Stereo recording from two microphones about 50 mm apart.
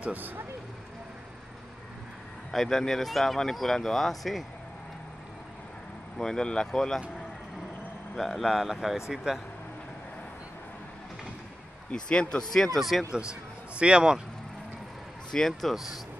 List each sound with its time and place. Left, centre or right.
0.0 s speech: right
2.5 s speech: centre
6.1 s speech: centre
8.2 s speech: centre
11.9 s speech: centre
12.5 s speech: centre
13.1 s a man's voice: centre
15.3 s speech: centre
15.7 s speech: centre